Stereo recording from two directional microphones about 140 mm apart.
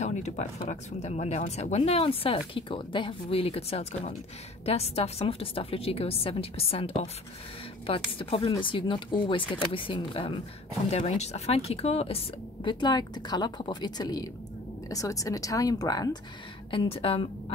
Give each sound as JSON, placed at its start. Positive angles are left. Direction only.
{"t": 0.0, "sound": "speech", "side_deg": 55}
{"t": 10.9, "sound": "speech", "side_deg": 50}
{"t": 16.7, "sound": "speech", "side_deg": 45}